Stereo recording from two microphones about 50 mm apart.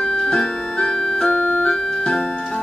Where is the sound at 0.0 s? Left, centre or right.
Centre.